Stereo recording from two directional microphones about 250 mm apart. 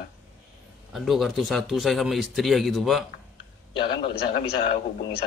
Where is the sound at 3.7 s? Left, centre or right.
Centre.